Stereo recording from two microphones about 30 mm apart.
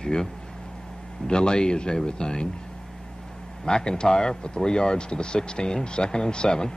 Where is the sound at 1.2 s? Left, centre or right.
Left.